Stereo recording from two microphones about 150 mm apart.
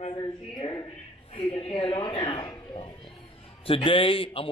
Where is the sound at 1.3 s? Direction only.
40° left (ahead or behind).